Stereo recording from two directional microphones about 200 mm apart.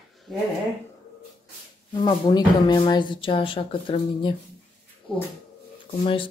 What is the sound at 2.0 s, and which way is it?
Speech, 25° left (ahead or behind).